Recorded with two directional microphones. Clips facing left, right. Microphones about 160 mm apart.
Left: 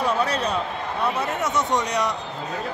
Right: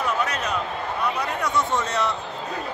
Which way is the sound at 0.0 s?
30° left (ahead or behind).